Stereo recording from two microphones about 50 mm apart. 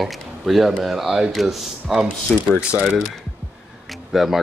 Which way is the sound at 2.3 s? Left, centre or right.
Left.